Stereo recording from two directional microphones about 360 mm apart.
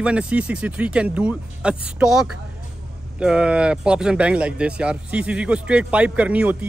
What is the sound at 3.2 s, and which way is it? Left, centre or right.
Speech, centre.